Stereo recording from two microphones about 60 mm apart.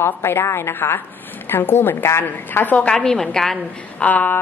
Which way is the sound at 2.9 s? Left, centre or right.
Centre.